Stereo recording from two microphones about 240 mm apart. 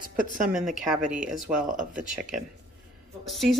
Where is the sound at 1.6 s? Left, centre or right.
Right.